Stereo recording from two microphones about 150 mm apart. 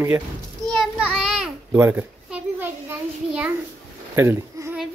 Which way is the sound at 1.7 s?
15° right (ahead or behind).